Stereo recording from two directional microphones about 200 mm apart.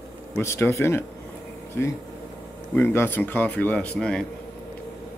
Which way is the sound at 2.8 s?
10° left (ahead or behind).